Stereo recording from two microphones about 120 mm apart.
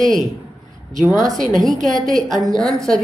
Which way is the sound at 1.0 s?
30° right (ahead or behind).